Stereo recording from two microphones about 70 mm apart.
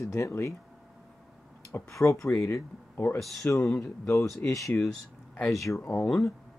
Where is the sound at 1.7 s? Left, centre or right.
Left.